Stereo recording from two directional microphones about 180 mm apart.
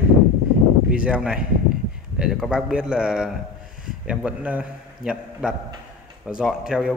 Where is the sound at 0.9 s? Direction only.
5° right (ahead or behind).